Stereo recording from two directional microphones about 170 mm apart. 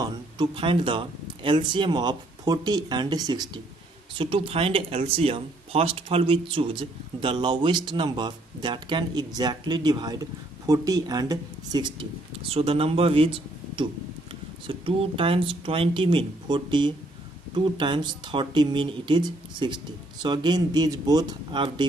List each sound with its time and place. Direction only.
0.0 s speech: 30° right (ahead or behind)